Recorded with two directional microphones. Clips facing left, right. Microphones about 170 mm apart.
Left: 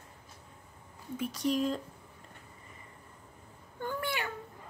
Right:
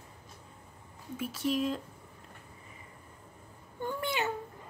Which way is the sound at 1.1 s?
5° right (ahead or behind).